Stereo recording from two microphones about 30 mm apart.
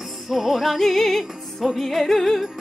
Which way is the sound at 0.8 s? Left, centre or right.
Centre.